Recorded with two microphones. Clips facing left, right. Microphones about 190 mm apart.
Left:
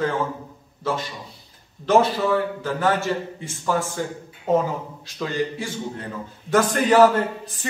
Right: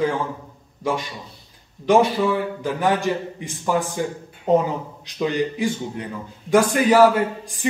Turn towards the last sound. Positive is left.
turn(degrees=-10)  # may be behind; listen again after turning